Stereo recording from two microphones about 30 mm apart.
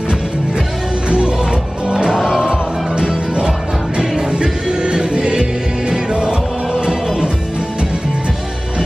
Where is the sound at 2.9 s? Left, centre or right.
Right.